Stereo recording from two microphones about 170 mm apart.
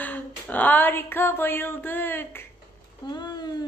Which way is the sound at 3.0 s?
25° left (ahead or behind).